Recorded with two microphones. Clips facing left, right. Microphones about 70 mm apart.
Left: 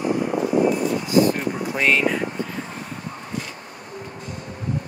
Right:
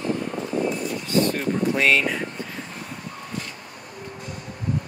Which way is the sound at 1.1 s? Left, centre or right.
Centre.